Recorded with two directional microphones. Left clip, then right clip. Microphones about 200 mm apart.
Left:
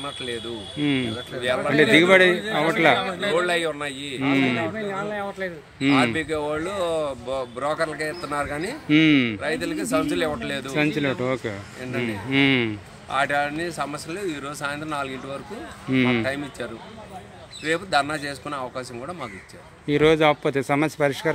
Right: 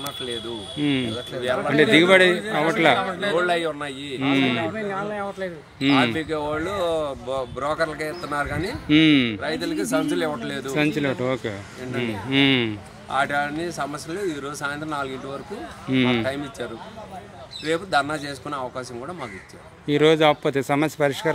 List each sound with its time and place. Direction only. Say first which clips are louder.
0.7 s speech: even; 5° left (ahead or behind)
1.4 s speech: even; 20° left (ahead or behind)
1.7 s speech: even; centre (ahead or behind)
3.0 s a man's voice: right 1 dB; 10° right (ahead or behind)
3.3 s a man's voice: right 1 dB; 15° left (ahead or behind)
4.2 s speech: even; 5° left (ahead or behind)
6.1 s a man's voice: even; 15° left (ahead or behind)
8.8 s speech: right 1 dB; centre (ahead or behind)
9.4 s speech: even; 20° left (ahead or behind)
10.7 s speech: right 1 dB; centre (ahead or behind)
13.1 s a man's voice: even; 15° left (ahead or behind)
17.6 s a man's voice: even; 10° left (ahead or behind)
19.9 s speech: right 1 dB; centre (ahead or behind)